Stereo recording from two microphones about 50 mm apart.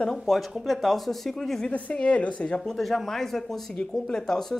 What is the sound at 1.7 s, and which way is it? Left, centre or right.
Speech, left.